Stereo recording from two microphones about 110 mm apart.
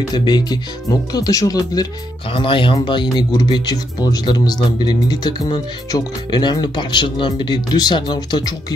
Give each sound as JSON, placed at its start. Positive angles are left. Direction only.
{"t": 0.1, "sound": "speech", "side_deg": 40}
{"t": 2.3, "sound": "speech", "side_deg": 50}